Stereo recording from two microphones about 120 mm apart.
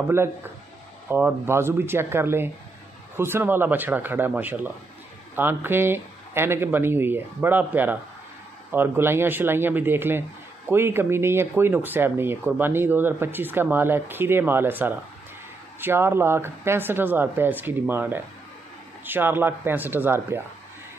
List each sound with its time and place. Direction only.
0.1 s speech: 20° right (ahead or behind)